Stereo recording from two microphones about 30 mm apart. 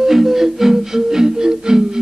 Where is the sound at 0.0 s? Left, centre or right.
Centre.